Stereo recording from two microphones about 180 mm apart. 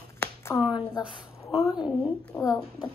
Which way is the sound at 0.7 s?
25° left (ahead or behind).